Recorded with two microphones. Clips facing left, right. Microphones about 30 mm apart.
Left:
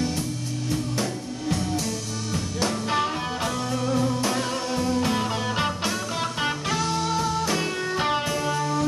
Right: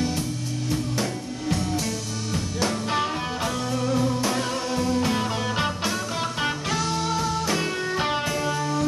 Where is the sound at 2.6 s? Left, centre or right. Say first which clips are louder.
Even; centre.